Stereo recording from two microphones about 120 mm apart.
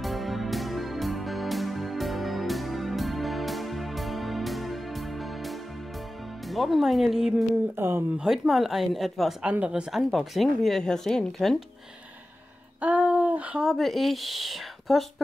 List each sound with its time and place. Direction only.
0.0 s music: centre (ahead or behind)
6.5 s a woman's voice: centre (ahead or behind)
7.7 s speech: 20° right (ahead or behind)
8.2 s a woman's voice: 5° right (ahead or behind)
12.8 s speech: 15° right (ahead or behind)